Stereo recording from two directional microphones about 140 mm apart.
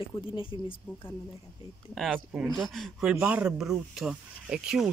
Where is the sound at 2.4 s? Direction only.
Centre (ahead or behind).